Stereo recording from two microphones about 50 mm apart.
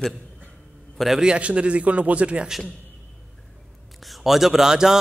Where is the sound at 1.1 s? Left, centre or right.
Centre.